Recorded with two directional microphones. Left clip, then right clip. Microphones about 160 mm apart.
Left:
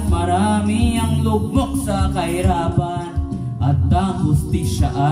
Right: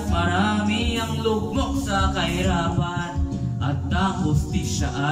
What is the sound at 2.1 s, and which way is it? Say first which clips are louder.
Music: left 4 dB; 35° left (ahead or behind).